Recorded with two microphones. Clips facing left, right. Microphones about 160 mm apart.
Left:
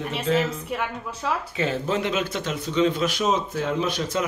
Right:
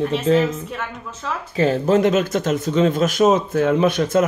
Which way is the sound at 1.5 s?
40° right (ahead or behind).